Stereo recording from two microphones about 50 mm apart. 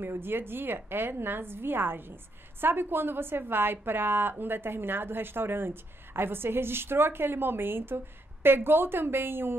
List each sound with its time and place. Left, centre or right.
0.0 s a woman's voice: right